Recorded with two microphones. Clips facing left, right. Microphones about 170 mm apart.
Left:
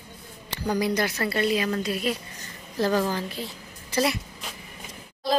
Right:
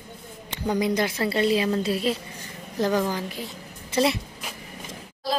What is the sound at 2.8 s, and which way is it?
Speech, 20° right (ahead or behind).